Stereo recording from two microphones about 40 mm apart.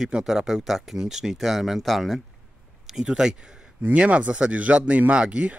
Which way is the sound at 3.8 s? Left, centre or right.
Right.